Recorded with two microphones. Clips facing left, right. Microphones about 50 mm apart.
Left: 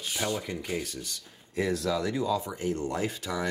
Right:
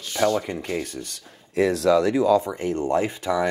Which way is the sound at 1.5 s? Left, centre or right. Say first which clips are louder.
Right 10 dB; right.